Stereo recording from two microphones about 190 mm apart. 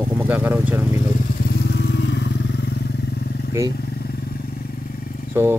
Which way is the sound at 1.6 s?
65° left (ahead or behind).